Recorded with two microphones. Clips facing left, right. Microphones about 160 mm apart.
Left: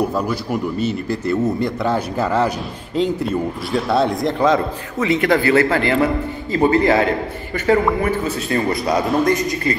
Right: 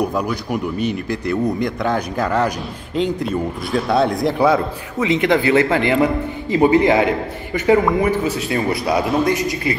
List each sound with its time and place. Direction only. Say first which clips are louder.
0.5 s a man's voice: even; 15° right (ahead or behind)
1.3 s speech: even; 5° left (ahead or behind)
3.7 s a man's voice: right 1 dB; centre (ahead or behind)
5.0 s a man's voice: even; 20° right (ahead or behind)